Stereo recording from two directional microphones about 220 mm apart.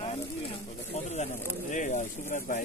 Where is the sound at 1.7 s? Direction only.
35° left (ahead or behind).